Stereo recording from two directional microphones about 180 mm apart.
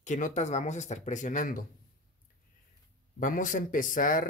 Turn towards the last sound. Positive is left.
turn(degrees=50)  # may be behind; listen again after turning